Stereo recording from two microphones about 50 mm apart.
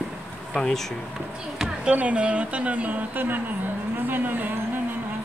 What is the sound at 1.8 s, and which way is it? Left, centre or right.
A woman's voice, right.